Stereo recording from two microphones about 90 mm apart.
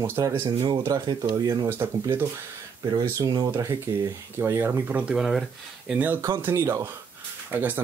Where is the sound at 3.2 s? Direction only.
50° right (ahead or behind).